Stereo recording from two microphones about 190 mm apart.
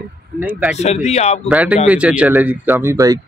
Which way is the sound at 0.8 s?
35° left (ahead or behind).